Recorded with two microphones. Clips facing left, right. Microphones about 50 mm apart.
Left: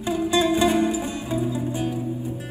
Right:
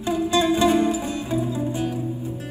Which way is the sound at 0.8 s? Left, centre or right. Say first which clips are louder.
Right 1 dB; left.